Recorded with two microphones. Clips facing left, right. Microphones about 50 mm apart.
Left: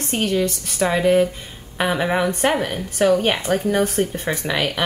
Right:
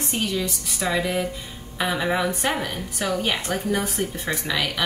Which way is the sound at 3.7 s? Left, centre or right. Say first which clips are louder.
Left 6 dB; left.